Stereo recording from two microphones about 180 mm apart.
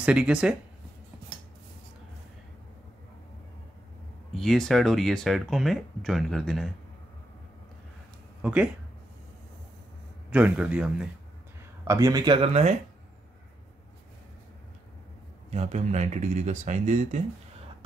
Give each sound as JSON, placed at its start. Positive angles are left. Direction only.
{"t": 0.0, "sound": "speech", "side_deg": -5}
{"t": 4.3, "sound": "speech", "side_deg": 0}
{"t": 8.4, "sound": "speech", "side_deg": -5}
{"t": 10.3, "sound": "a man's voice", "side_deg": -5}
{"t": 11.9, "sound": "speech", "side_deg": -20}
{"t": 15.5, "sound": "speech", "side_deg": -40}